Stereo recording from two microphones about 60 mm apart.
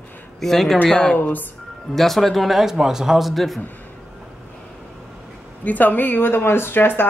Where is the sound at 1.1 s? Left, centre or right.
Left.